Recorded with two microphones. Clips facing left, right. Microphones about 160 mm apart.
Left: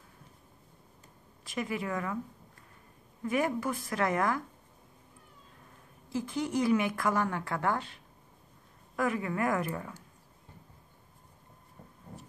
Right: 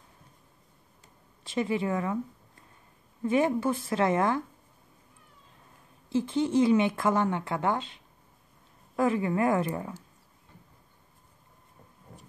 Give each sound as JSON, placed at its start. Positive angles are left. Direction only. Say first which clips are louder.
{"t": 1.4, "sound": "speech", "louder": "right 6 dB", "side_deg": -25}
{"t": 3.3, "sound": "speech", "louder": "right 5 dB", "side_deg": -25}
{"t": 6.0, "sound": "speech", "louder": "right 6 dB", "side_deg": -25}